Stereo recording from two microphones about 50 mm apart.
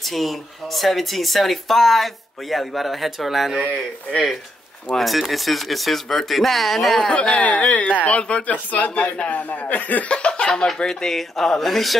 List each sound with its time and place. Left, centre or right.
0.0 s speech: centre
4.9 s speech: centre
7.0 s speech: centre